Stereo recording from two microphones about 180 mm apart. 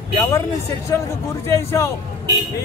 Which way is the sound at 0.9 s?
15° left (ahead or behind).